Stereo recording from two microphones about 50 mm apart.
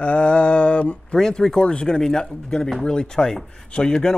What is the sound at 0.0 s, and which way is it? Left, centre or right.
Mantra, left.